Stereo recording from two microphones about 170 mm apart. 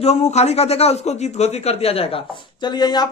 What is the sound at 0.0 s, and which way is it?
A man's voice, 40° left (ahead or behind).